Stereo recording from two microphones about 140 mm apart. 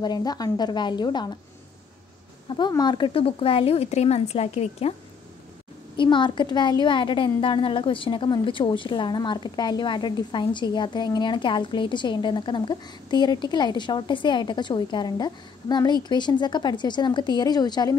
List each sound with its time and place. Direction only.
0.0 s a woman's voice: 30° left (ahead or behind)
2.7 s speech: 30° left (ahead or behind); by 4.9 s 45° left (ahead or behind)
5.9 s a woman's voice: 35° left (ahead or behind)